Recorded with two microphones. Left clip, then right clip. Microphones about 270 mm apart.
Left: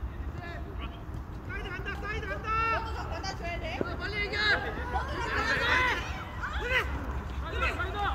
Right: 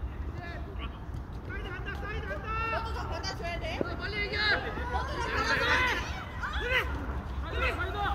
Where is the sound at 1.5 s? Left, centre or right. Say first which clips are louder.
Left 2 dB; left.